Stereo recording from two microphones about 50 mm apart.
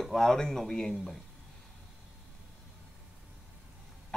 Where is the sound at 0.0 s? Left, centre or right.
Centre.